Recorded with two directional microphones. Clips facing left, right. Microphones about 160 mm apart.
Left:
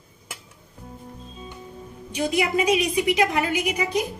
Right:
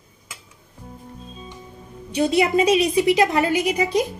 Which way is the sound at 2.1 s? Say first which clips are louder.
Right 5 dB; 30° right (ahead or behind).